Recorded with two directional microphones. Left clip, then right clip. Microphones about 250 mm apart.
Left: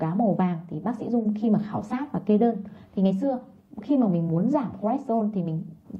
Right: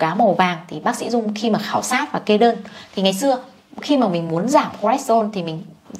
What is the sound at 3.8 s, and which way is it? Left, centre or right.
A woman's voice, centre.